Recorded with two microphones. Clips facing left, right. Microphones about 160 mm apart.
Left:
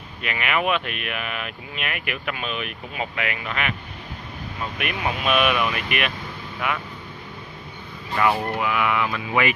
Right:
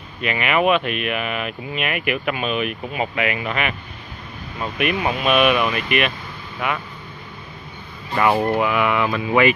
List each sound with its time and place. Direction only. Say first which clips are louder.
0.2 s speech: right 5 dB; centre (ahead or behind)
4.7 s speech: right 7 dB; centre (ahead or behind)
8.2 s speech: right 4 dB; 35° right (ahead or behind)